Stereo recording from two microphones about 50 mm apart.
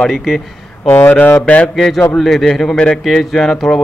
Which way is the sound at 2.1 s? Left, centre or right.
Centre.